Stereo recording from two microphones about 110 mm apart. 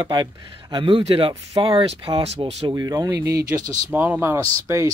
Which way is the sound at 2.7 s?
30° right (ahead or behind).